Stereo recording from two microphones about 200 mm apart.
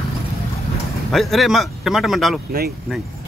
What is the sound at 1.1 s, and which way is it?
Speech, centre (ahead or behind).